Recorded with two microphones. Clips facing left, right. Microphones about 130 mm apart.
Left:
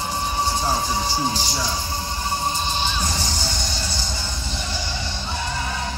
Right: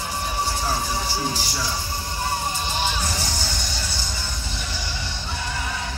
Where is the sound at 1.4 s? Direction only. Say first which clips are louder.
Left 2 dB; 20° left (ahead or behind).